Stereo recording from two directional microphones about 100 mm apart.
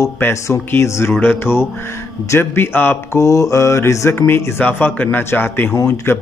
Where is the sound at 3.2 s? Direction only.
35° left (ahead or behind).